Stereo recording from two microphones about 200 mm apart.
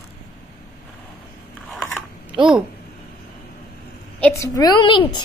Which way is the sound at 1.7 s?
Centre (ahead or behind).